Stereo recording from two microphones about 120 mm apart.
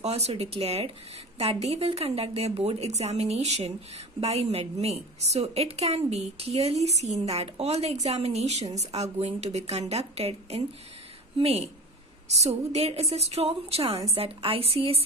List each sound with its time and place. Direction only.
0.0 s a woman's voice: 60° right (ahead or behind)